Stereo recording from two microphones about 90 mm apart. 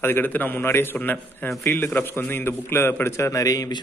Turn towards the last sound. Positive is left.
turn(degrees=40)  # may be behind; listen again after turning